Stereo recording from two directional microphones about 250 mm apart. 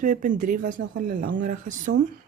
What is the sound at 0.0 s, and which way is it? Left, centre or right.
Speech, right.